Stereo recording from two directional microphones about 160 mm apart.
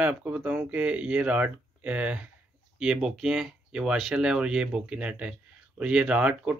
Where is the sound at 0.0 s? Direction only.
10° right (ahead or behind).